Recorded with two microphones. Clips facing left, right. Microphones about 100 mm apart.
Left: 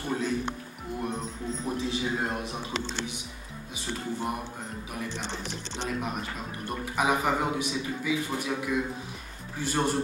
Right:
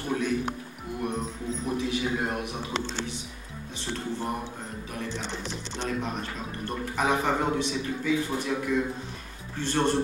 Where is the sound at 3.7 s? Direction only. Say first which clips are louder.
Right 1 dB; 10° left (ahead or behind).